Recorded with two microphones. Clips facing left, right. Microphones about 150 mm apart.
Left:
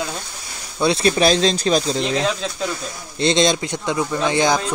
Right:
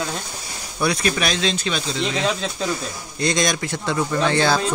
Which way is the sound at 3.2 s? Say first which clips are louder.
Left 4 dB; 25° left (ahead or behind).